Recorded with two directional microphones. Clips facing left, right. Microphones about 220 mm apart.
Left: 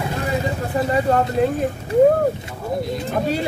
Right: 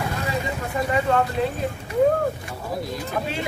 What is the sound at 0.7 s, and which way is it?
Speech, 35° left (ahead or behind).